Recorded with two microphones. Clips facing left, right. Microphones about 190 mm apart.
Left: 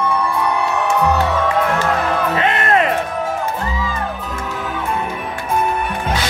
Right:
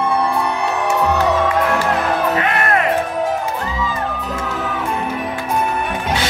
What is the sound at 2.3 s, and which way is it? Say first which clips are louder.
Music: left 1 dB; 25° left (ahead or behind).